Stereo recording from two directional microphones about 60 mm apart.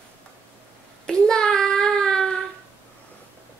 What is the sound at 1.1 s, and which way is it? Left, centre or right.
Child singing, centre.